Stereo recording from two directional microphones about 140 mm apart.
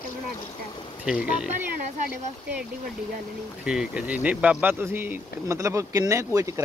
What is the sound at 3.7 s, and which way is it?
Speech, 5° right (ahead or behind).